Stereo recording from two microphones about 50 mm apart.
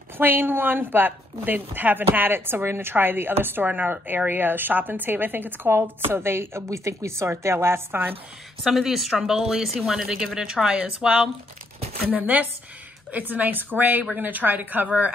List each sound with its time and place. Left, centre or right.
0.2 s a woman's voice: right
8.6 s a woman's voice: centre
12.1 s a woman's voice: right